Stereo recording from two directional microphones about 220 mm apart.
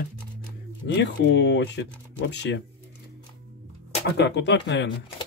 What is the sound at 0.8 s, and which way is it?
Speech, 55° left (ahead or behind).